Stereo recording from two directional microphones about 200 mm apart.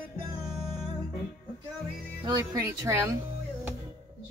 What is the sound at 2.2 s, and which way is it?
Speech, 15° right (ahead or behind).